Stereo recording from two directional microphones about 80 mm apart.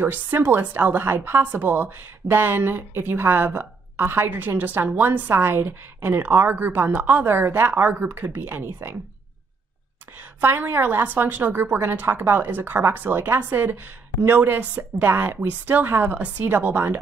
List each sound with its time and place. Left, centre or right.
0.0 s a woman's voice: right
10.4 s a woman's voice: right